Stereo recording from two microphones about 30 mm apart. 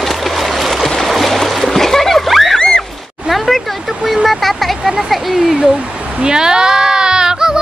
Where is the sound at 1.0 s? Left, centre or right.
Centre.